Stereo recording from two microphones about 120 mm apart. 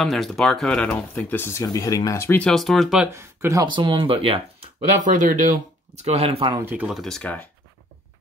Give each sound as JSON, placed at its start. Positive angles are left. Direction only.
{"t": 0.0, "sound": "speech", "side_deg": 0}
{"t": 2.3, "sound": "speech", "side_deg": 5}
{"t": 3.1, "sound": "speech", "side_deg": -25}
{"t": 3.6, "sound": "speech", "side_deg": -40}
{"t": 4.7, "sound": "speech", "side_deg": -90}
{"t": 6.0, "sound": "speech", "side_deg": -60}
{"t": 6.6, "sound": "speech", "side_deg": -10}